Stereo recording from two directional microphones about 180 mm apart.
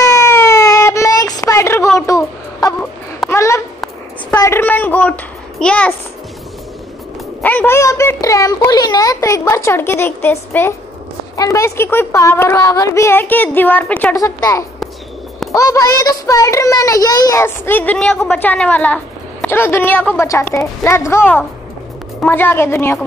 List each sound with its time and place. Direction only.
0.0 s child singing: 20° left (ahead or behind)
2.8 s a sound: 10° left (ahead or behind)
7.4 s a child's voice: 10° left (ahead or behind)
14.1 s a child's voice: 20° left (ahead or behind)